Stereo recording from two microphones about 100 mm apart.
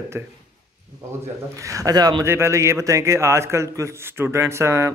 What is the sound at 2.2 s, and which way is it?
A man's voice, 25° right (ahead or behind).